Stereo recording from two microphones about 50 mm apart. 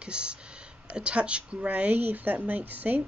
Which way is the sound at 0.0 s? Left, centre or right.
Right.